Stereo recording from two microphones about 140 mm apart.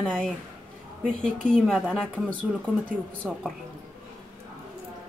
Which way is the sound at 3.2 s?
5° right (ahead or behind).